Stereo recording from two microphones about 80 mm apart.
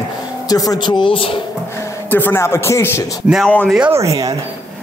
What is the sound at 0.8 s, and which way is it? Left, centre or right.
Speech, left.